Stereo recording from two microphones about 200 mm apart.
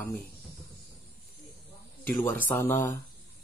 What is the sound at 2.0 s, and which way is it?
Speech, 15° left (ahead or behind).